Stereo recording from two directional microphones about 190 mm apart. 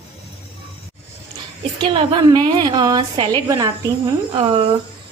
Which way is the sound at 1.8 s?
25° right (ahead or behind).